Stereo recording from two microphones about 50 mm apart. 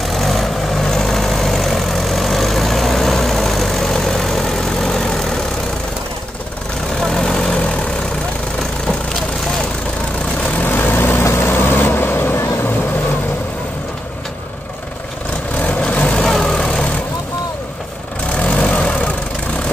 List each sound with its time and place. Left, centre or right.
0.0 s vehicle: centre
7.0 s vehicle: centre
10.6 s vehicle: left
11.2 s vehicle: left
11.5 s vehicle: left
15.8 s vehicle: left
16.3 s vehicle: centre
18.4 s vehicle: left